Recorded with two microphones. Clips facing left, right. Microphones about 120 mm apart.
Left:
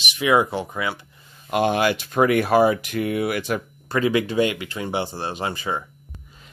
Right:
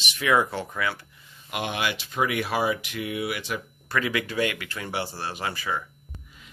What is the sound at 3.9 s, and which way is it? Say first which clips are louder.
Speech: left 7 dB; 25° left (ahead or behind).